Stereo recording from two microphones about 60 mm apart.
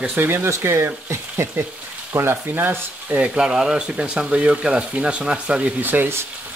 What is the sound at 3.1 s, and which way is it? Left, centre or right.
Speech, centre.